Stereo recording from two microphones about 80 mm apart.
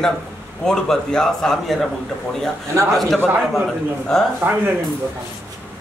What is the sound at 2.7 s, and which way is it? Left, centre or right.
Speech, right.